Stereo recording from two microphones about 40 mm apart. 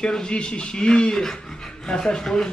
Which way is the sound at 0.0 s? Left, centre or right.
Left.